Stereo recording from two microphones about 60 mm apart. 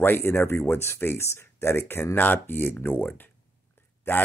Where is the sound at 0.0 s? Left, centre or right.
Left.